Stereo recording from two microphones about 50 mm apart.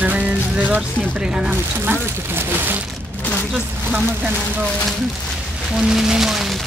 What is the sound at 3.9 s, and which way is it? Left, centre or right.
Speech, right.